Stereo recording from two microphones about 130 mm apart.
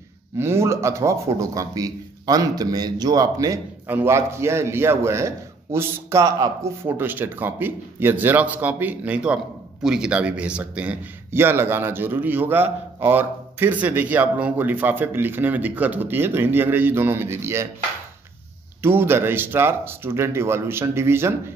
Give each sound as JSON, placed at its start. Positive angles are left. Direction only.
{"t": 0.4, "sound": "a man's voice", "side_deg": -20}
{"t": 3.8, "sound": "a man's voice", "side_deg": -15}
{"t": 6.9, "sound": "a man's voice", "side_deg": -15}
{"t": 18.8, "sound": "a man's voice", "side_deg": -15}